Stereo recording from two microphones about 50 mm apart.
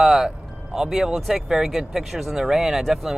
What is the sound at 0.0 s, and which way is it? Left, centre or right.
Music, centre.